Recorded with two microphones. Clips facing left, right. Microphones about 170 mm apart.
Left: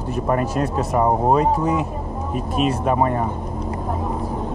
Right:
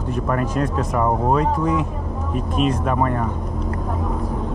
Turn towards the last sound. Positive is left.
turn(degrees=10)  # may be behind; listen again after turning